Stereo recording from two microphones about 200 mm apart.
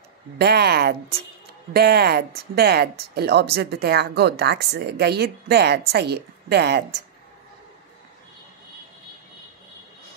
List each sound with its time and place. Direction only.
0.4 s speech: 55° right (ahead or behind)